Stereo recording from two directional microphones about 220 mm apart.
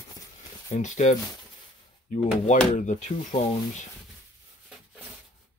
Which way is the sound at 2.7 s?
35° left (ahead or behind).